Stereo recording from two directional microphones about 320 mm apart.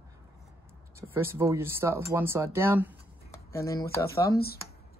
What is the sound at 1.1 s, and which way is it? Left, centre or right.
Speech, centre.